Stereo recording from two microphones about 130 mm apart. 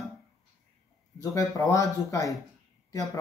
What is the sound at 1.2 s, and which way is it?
Speech, 25° left (ahead or behind).